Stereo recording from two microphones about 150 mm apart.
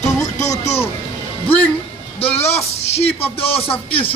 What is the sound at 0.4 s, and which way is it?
Music, 45° left (ahead or behind).